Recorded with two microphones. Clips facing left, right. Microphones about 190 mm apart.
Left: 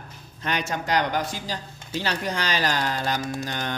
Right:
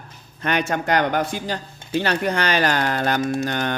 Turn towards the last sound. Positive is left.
turn(degrees=-60)  # may be behind; listen again after turning